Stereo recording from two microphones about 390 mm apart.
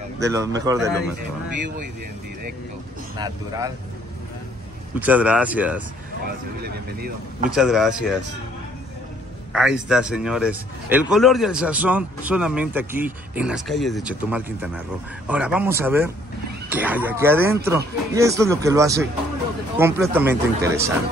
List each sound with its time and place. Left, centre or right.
0.2 s speech: centre
3.2 s speech: centre
5.0 s a man's voice: centre
6.6 s speech: right
7.4 s a man's voice: centre
9.5 s a man's voice: centre